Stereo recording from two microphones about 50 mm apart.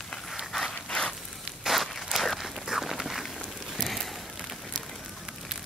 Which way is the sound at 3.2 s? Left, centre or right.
Centre.